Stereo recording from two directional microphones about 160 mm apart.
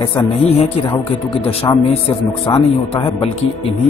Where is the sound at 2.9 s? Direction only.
40° left (ahead or behind).